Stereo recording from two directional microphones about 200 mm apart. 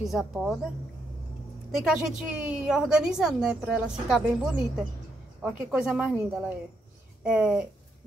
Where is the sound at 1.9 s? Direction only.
5° right (ahead or behind).